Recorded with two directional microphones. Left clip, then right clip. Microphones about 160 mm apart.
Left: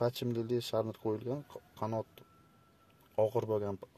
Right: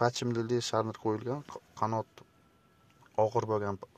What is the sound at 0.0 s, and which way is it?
Speech, 5° left (ahead or behind).